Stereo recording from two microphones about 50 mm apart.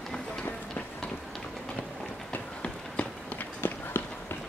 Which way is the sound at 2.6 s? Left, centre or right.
Left.